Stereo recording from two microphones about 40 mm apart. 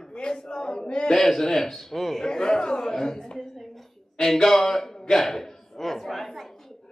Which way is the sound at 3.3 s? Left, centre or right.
Centre.